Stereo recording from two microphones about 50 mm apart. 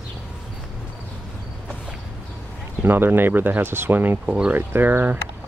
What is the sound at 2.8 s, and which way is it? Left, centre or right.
Speech, right.